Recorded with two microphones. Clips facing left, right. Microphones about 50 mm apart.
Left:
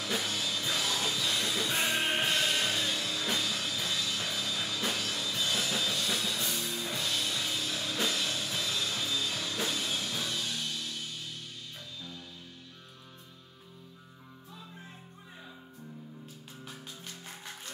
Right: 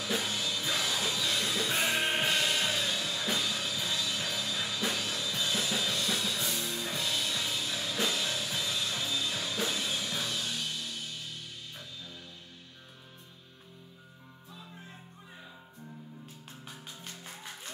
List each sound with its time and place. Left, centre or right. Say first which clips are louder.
0.0 s music: right 1 dB; centre
3.6 s music: even; centre